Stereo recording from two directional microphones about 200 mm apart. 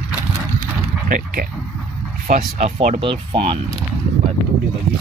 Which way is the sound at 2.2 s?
40° right (ahead or behind).